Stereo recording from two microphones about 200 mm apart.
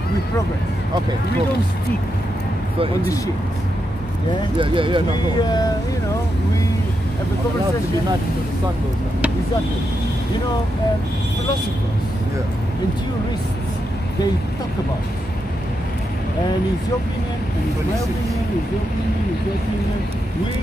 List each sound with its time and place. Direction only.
4.6 s speech: 25° right (ahead or behind)
5.4 s speech: 20° left (ahead or behind)